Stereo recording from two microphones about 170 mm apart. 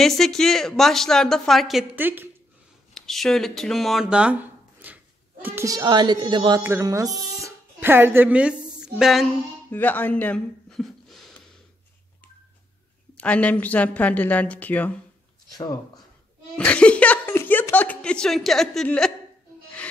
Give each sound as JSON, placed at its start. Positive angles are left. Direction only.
{"t": 0.0, "sound": "a woman's voice", "side_deg": 0}
{"t": 2.9, "sound": "speech", "side_deg": 0}
{"t": 6.6, "sound": "speech", "side_deg": -15}
{"t": 9.7, "sound": "a sound", "side_deg": 10}
{"t": 13.2, "sound": "a woman's voice", "side_deg": 10}
{"t": 15.5, "sound": "speech", "side_deg": 25}
{"t": 16.5, "sound": "speech", "side_deg": 5}